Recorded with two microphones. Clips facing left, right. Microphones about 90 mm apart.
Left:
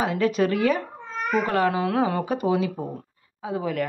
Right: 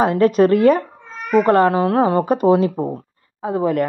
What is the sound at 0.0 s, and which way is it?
A woman's voice, 45° right (ahead or behind).